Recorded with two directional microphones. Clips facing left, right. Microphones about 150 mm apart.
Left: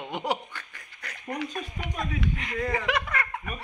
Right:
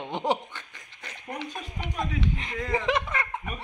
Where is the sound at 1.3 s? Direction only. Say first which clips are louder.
Left 3 dB; 25° right (ahead or behind).